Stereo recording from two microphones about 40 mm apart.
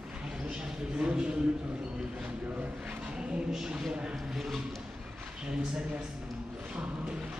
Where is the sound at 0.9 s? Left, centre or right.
Right.